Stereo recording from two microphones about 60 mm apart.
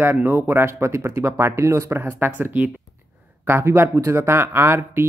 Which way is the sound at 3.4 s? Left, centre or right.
Right.